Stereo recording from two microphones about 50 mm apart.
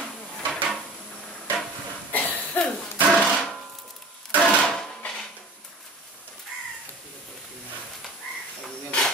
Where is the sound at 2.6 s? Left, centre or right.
Left.